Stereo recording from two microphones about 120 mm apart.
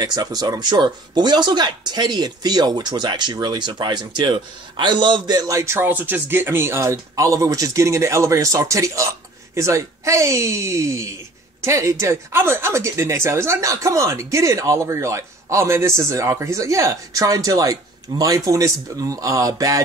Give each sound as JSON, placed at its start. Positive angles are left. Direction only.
{"t": 0.0, "sound": "speech", "side_deg": -35}